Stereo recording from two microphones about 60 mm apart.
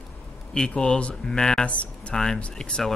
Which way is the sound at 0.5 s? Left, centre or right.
Centre.